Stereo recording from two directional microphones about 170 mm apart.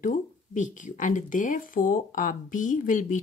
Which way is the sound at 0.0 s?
50° left (ahead or behind).